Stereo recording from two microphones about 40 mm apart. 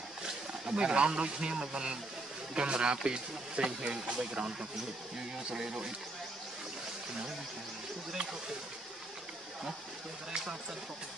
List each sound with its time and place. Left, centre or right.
0.7 s speech: right
8.1 s speech: centre